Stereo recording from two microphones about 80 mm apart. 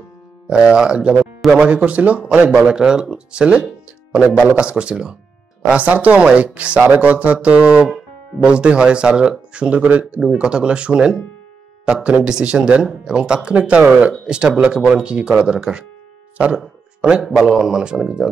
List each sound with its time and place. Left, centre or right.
0.5 s speech: centre
16.3 s a sound: centre
17.4 s speech: centre